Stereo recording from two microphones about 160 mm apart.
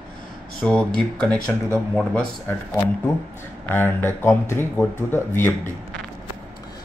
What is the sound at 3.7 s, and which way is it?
Speech, 15° left (ahead or behind).